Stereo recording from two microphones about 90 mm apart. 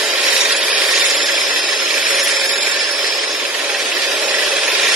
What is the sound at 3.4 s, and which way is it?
Engine, 20° right (ahead or behind).